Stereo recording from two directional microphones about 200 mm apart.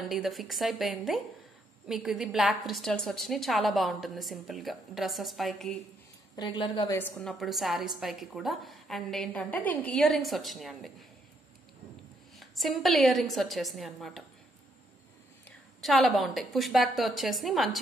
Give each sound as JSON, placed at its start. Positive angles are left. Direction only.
{"t": 0.1, "sound": "a woman's voice", "side_deg": 0}
{"t": 6.3, "sound": "a woman's voice", "side_deg": 20}
{"t": 7.0, "sound": "a woman's voice", "side_deg": 5}
{"t": 12.4, "sound": "a woman's voice", "side_deg": 0}
{"t": 15.8, "sound": "a woman's voice", "side_deg": 0}